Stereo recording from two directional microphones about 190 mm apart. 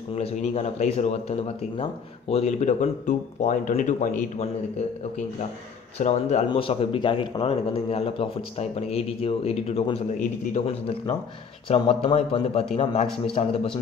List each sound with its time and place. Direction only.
0.1 s speech: 35° left (ahead or behind)
5.9 s speech: 35° left (ahead or behind)